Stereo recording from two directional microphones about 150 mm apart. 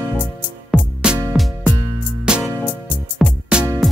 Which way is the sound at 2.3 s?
5° right (ahead or behind).